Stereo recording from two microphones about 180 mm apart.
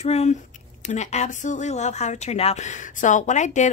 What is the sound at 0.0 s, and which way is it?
Speech, 35° left (ahead or behind).